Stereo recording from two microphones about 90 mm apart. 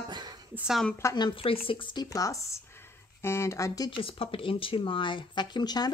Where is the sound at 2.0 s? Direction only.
40° left (ahead or behind).